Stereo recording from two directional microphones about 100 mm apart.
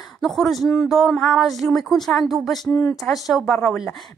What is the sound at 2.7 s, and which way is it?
Speech, 20° left (ahead or behind).